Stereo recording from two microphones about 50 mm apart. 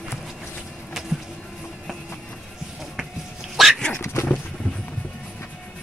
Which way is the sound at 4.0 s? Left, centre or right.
Left.